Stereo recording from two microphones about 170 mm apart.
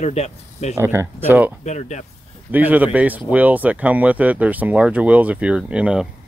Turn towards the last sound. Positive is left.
turn(degrees=-5)  # may be behind; listen again after turning